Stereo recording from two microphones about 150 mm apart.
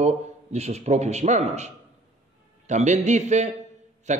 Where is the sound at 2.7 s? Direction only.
50° right (ahead or behind).